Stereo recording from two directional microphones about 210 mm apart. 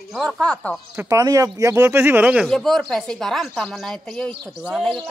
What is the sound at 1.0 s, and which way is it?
A man's voice, 15° right (ahead or behind).